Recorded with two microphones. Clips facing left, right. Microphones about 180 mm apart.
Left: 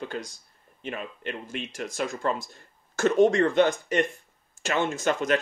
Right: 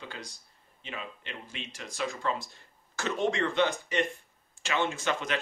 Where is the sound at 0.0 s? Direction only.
50° left (ahead or behind).